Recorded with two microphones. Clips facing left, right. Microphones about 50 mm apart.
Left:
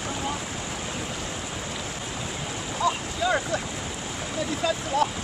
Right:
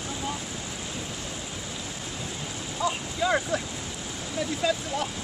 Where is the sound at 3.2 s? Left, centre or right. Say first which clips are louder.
Even; centre.